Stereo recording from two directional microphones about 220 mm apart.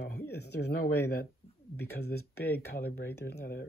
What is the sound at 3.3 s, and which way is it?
Speech, 45° left (ahead or behind).